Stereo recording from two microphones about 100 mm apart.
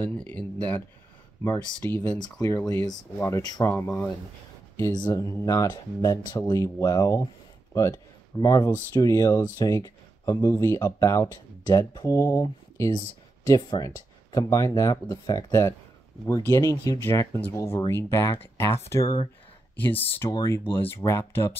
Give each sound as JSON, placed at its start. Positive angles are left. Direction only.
{"t": 0.0, "sound": "speech", "side_deg": 15}
{"t": 2.2, "sound": "speech", "side_deg": 35}
{"t": 3.6, "sound": "speech", "side_deg": 25}
{"t": 5.1, "sound": "speech", "side_deg": 35}
{"t": 8.4, "sound": "speech", "side_deg": 40}
{"t": 11.6, "sound": "speech", "side_deg": 40}
{"t": 13.6, "sound": "speech", "side_deg": 45}